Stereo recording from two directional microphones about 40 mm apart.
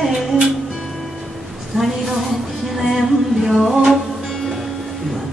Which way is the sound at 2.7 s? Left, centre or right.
Centre.